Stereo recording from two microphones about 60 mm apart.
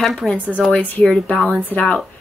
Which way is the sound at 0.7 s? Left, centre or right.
Left.